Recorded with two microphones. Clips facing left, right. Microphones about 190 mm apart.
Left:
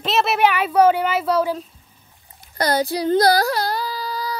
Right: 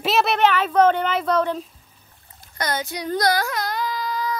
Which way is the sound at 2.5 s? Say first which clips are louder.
Left 7 dB; 35° left (ahead or behind).